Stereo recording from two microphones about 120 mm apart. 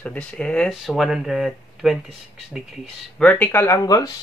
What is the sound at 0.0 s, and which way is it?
Speech, 10° left (ahead or behind).